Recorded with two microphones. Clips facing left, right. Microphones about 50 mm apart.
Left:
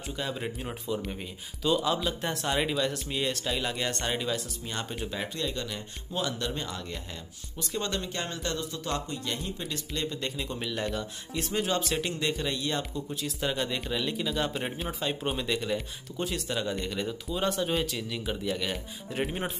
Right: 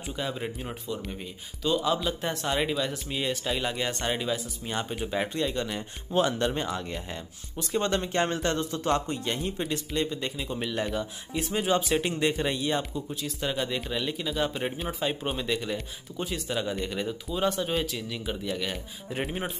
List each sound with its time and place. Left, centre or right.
0.1 s speech: centre
5.1 s speech: centre
6.1 s speech: right
10.2 s speech: centre
13.1 s speech: centre